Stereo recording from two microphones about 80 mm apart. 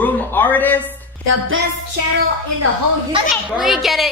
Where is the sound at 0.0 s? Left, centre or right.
Left.